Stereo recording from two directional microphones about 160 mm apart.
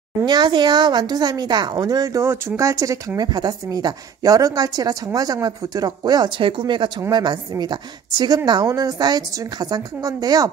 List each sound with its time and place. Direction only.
0.2 s speech: 25° right (ahead or behind)